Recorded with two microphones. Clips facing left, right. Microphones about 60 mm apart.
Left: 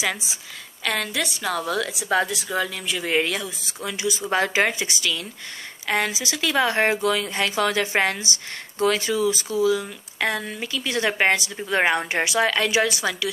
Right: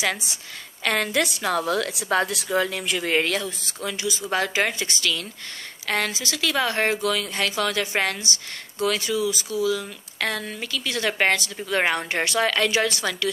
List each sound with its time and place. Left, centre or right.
0.0 s a woman's voice: centre
3.9 s speech: left